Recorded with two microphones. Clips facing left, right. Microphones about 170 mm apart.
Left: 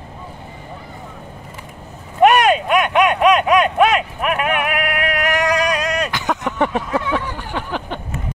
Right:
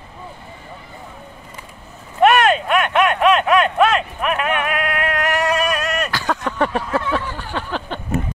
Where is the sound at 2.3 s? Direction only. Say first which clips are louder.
Left 1 dB; 15° left (ahead or behind).